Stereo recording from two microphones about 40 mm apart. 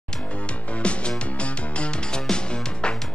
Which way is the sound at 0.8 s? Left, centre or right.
Left.